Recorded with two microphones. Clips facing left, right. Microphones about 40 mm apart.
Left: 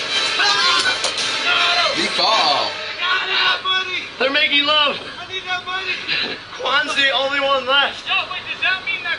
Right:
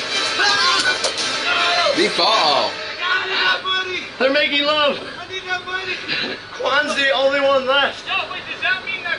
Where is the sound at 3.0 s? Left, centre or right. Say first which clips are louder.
Left 1 dB; left.